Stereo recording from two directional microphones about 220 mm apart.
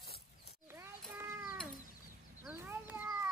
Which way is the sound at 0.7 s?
10° right (ahead or behind).